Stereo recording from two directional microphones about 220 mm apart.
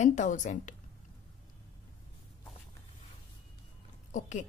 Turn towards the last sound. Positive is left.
turn(degrees=35)  # may be behind; listen again after turning